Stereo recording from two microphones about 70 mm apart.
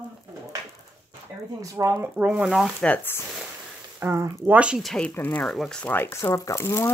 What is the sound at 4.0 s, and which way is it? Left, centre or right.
Speech, right.